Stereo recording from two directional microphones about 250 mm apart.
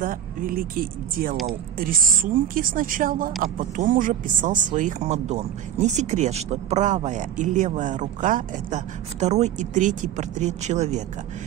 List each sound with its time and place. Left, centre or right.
0.0 s a woman's voice: right